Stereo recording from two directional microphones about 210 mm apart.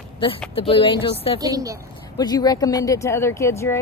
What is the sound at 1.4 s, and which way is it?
Speech, 15° right (ahead or behind).